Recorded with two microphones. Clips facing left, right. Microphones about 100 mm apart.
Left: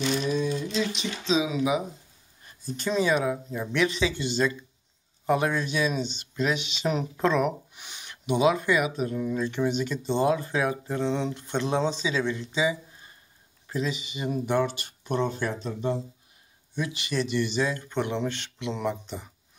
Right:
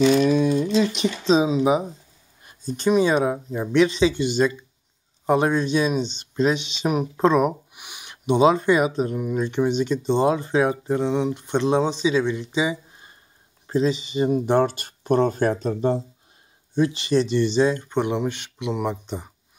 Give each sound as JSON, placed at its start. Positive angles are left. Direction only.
{"t": 0.2, "sound": "a sound", "side_deg": -70}
{"t": 1.2, "sound": "speech", "side_deg": -40}
{"t": 2.4, "sound": "speech", "side_deg": -20}
{"t": 8.3, "sound": "speech", "side_deg": -30}
{"t": 9.1, "sound": "speech", "side_deg": -15}
{"t": 11.1, "sound": "speech", "side_deg": -15}
{"t": 13.7, "sound": "speech", "side_deg": -30}
{"t": 16.7, "sound": "speech", "side_deg": -30}